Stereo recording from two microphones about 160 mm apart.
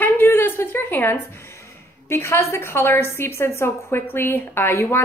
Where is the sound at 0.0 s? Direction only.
15° left (ahead or behind).